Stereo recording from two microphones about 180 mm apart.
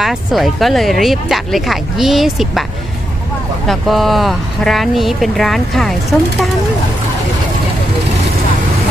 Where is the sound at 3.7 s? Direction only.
Centre (ahead or behind).